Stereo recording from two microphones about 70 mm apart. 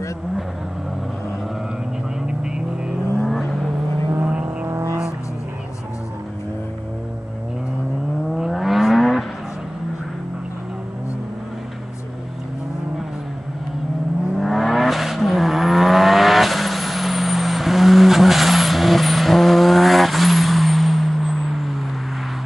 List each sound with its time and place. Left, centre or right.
3.3 s vehicle: centre
4.6 s vehicle: right
8.4 s vehicle: centre
14.3 s vehicle: centre